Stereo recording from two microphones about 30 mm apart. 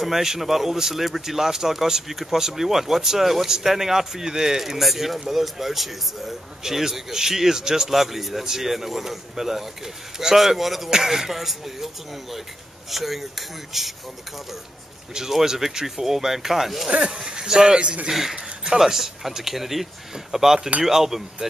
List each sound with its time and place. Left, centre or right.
0.0 s speech: centre
15.1 s speech: centre
17.1 s speech: right
18.3 s a sound: right
18.8 s speech: centre